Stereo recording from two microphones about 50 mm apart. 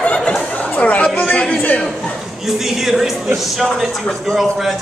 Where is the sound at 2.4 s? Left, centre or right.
Centre.